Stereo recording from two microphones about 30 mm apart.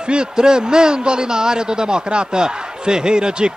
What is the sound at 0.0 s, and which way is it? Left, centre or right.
A man's voice, right.